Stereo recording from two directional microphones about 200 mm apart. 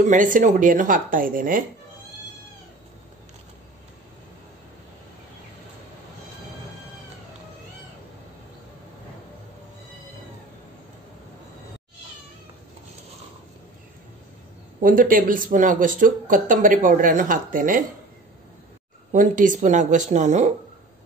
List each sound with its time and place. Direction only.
0.0 s a woman's voice: 40° right (ahead or behind)
14.8 s a woman's voice: 45° right (ahead or behind)
19.1 s a woman's voice: 40° right (ahead or behind)